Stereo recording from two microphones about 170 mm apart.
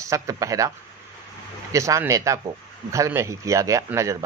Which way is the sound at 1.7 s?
20° right (ahead or behind).